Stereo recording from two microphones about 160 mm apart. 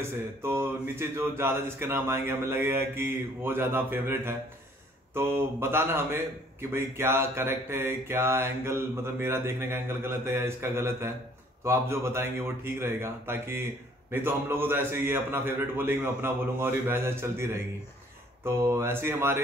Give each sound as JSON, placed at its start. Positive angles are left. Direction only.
{"t": 0.4, "sound": "speech", "side_deg": -15}